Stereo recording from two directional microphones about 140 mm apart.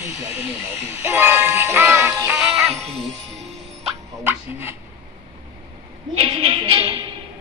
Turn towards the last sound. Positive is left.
turn(degrees=-35)  # may be behind; listen again after turning